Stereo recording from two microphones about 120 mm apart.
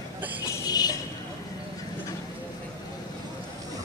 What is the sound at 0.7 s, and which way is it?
Music, 35° left (ahead or behind).